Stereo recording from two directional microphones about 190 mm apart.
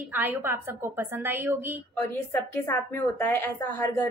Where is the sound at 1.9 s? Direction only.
10° left (ahead or behind).